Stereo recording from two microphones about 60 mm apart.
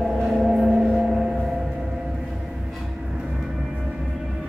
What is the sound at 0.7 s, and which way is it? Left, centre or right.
Vehicle, centre.